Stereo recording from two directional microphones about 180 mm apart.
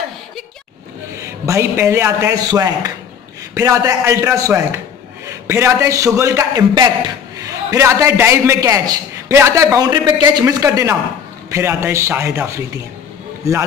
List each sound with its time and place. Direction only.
1.4 s a man's voice: 15° right (ahead or behind)